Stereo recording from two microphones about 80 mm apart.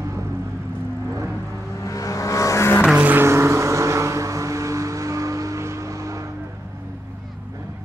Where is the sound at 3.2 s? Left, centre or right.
Right.